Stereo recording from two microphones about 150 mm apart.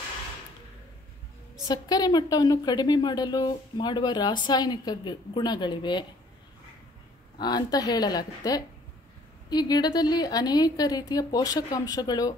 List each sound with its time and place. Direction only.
1.7 s a woman's voice: 25° left (ahead or behind)
7.3 s a woman's voice: 30° left (ahead or behind)